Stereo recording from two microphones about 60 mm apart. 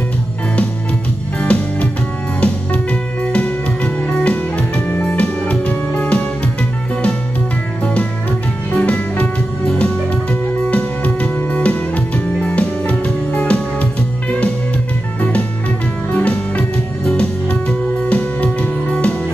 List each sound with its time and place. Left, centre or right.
1.4 s music: left
7.8 s music: left
15.1 s music: left